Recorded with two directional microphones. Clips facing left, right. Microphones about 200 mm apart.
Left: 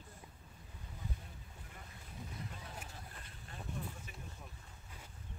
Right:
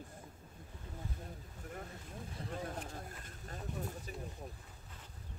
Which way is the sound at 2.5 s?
50° right (ahead or behind).